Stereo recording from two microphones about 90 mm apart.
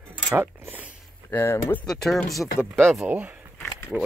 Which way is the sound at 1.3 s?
30° left (ahead or behind).